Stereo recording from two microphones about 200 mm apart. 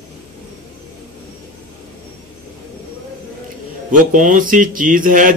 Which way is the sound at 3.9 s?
40° right (ahead or behind).